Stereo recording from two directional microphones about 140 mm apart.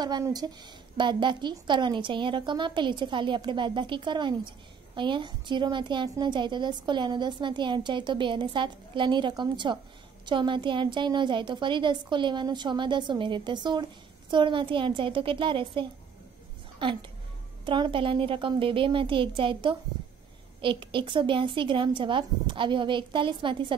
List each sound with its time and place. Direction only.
0.0 s a woman's voice: 30° right (ahead or behind)
17.6 s a woman's voice: 35° right (ahead or behind)